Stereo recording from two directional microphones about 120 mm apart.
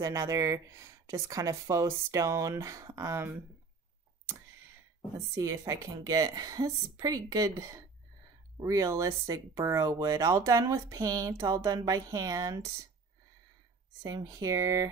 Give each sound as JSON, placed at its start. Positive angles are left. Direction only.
{"t": 0.0, "sound": "speech", "side_deg": -25}
{"t": 5.3, "sound": "speech", "side_deg": -30}
{"t": 14.0, "sound": "speech", "side_deg": -30}